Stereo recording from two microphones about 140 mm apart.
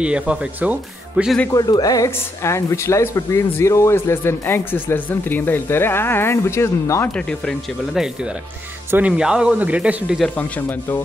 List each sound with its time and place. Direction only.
0.0 s speech: 5° right (ahead or behind)
1.5 s speech: 25° left (ahead or behind)
7.1 s speech: 5° left (ahead or behind)
10.3 s speech: 10° left (ahead or behind)